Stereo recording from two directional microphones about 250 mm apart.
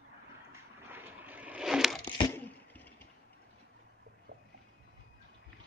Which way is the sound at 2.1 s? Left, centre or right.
Centre.